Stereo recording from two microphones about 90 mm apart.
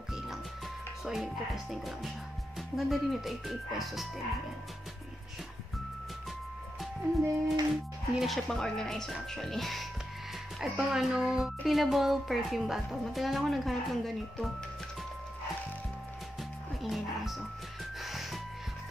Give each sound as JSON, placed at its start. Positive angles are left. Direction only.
{"t": 1.0, "sound": "speech", "side_deg": -5}
{"t": 6.8, "sound": "speech", "side_deg": 0}
{"t": 16.9, "sound": "speech", "side_deg": 0}
{"t": 18.0, "sound": "music", "side_deg": 0}